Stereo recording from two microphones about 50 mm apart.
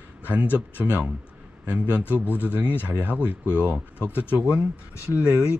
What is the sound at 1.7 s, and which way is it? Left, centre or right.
Speech, right.